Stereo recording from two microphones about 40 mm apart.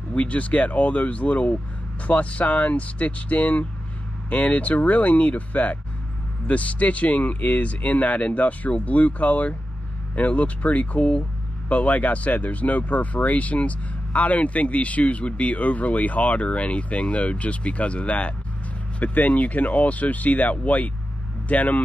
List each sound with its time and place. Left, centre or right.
0.1 s speech: left